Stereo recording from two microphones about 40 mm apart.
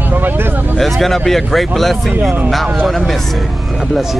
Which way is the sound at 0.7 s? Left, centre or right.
Centre.